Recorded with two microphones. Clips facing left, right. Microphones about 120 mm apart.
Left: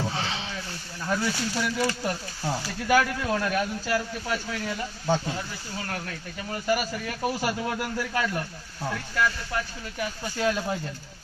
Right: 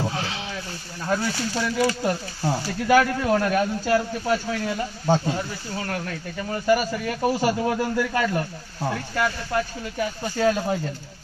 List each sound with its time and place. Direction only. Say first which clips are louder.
0.0 s rowboat: right 2 dB; 5° right (ahead or behind)
1.0 s a man's voice: right 3 dB; 20° right (ahead or behind)
6.5 s a man's voice: right 5 dB; 30° right (ahead or behind)